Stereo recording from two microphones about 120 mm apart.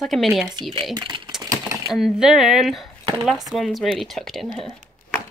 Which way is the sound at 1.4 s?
30° right (ahead or behind).